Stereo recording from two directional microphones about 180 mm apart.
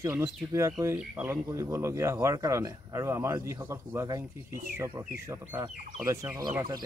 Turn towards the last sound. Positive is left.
turn(degrees=-25)  # may be behind; listen again after turning